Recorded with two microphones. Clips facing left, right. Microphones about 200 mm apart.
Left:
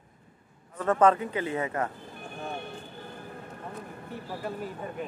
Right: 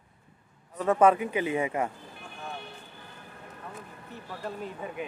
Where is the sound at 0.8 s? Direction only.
10° right (ahead or behind).